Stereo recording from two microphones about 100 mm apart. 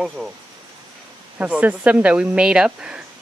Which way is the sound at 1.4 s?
15° right (ahead or behind).